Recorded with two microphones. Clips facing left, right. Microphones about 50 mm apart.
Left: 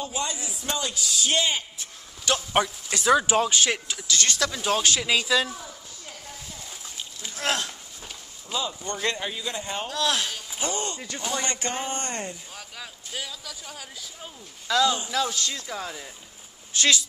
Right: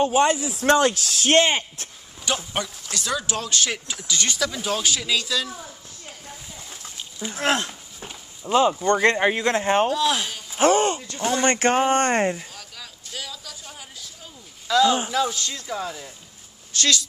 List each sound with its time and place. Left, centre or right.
0.0 s speech: right
2.5 s speech: centre
4.1 s speech: centre
4.5 s speech: centre
5.0 s speech: centre
7.3 s walk: right
8.5 s speech: right
9.8 s speech: centre
10.6 s speech: right
11.4 s speech: right
12.5 s a sound: centre
14.7 s speech: centre
16.7 s speech: centre